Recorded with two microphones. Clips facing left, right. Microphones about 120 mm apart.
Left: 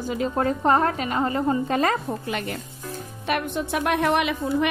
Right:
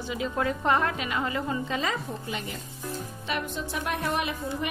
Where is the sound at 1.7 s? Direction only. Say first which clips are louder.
Left 7 dB; 55° left (ahead or behind).